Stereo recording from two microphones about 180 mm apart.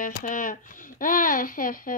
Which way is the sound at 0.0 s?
45° left (ahead or behind).